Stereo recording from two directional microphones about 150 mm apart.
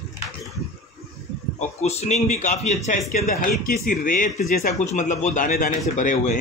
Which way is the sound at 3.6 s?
70° left (ahead or behind).